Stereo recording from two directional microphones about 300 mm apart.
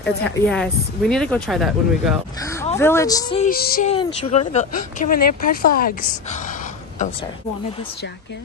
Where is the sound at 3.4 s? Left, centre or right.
Left.